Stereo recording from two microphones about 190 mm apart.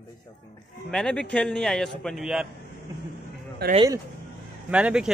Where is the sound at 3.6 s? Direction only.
60° right (ahead or behind).